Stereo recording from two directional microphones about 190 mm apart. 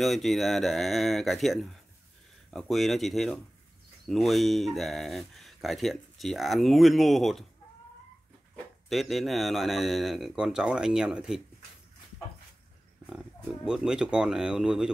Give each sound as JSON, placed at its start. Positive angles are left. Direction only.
{"t": 0.0, "sound": "speech", "side_deg": 0}
{"t": 8.8, "sound": "speech", "side_deg": 0}
{"t": 13.7, "sound": "speech", "side_deg": -5}